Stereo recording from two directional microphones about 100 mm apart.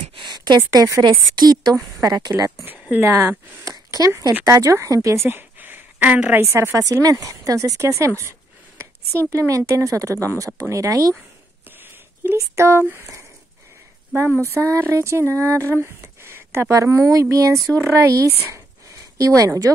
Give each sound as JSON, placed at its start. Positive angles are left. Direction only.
{"t": 0.1, "sound": "a sound", "side_deg": -50}
{"t": 0.6, "sound": "speech", "side_deg": -30}
{"t": 1.0, "sound": "a woman's voice", "side_deg": -45}
{"t": 3.0, "sound": "speech", "side_deg": -25}
{"t": 3.7, "sound": "a sound", "side_deg": -35}
{"t": 4.5, "sound": "speech", "side_deg": -30}
{"t": 6.4, "sound": "speech", "side_deg": -25}
{"t": 11.8, "sound": "a sound", "side_deg": -20}
{"t": 12.4, "sound": "speech", "side_deg": -30}
{"t": 14.4, "sound": "speech", "side_deg": -30}